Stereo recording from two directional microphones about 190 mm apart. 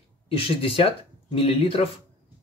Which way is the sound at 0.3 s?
30° left (ahead or behind).